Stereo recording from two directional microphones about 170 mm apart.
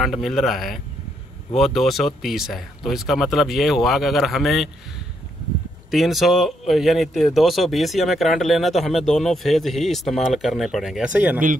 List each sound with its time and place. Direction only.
0.0 s a man's voice: centre (ahead or behind)